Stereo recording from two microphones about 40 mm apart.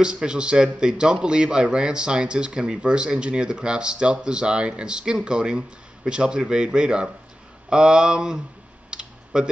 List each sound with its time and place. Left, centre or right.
0.0 s speech: right
8.9 s computer keyboard: right